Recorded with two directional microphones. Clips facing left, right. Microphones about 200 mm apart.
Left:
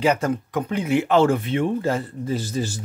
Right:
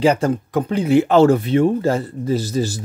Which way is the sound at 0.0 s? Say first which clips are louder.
Right 4 dB; 30° right (ahead or behind).